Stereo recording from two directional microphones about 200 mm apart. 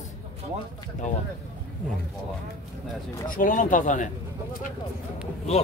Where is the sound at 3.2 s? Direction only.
40° left (ahead or behind).